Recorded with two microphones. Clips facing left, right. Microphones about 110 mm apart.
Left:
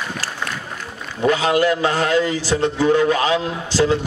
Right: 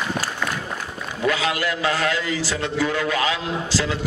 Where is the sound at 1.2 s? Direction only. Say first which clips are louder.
Left 6 dB; 30° left (ahead or behind).